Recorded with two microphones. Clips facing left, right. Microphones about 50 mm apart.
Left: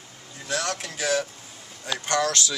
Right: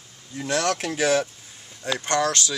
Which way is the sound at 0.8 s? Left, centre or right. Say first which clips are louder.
Right 4 dB; right.